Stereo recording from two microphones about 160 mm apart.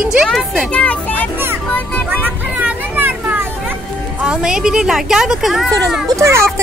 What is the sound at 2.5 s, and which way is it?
Children playing, 10° right (ahead or behind).